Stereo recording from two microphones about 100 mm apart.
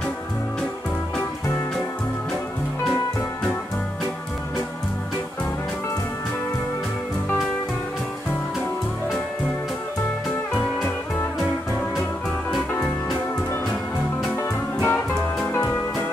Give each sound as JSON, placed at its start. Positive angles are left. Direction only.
{"t": 14.3, "sound": "music", "side_deg": 25}